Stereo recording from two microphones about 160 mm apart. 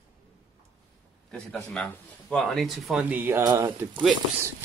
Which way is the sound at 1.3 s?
5° left (ahead or behind).